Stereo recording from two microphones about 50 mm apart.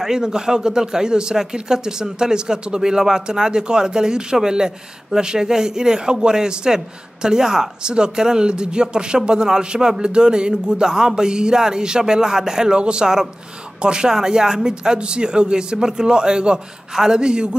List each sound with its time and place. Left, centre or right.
0.0 s speech: centre